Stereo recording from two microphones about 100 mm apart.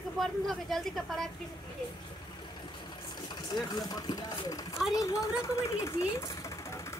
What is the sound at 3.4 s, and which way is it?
Speech, 40° left (ahead or behind).